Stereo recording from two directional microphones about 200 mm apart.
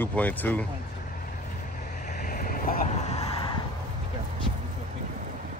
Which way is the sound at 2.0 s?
45° left (ahead or behind).